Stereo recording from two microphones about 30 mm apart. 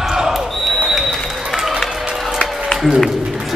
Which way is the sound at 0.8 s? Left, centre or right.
Centre.